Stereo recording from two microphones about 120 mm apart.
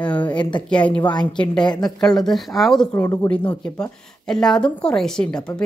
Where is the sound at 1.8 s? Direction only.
5° left (ahead or behind).